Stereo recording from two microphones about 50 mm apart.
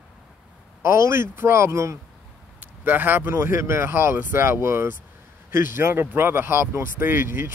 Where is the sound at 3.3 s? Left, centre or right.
Right.